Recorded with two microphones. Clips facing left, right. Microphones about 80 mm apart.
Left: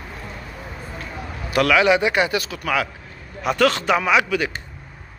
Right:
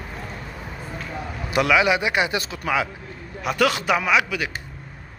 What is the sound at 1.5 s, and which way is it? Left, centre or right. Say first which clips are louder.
Speech: left 2 dB; centre.